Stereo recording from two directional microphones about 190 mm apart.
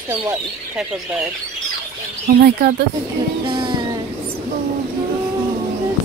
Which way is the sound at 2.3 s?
55° right (ahead or behind).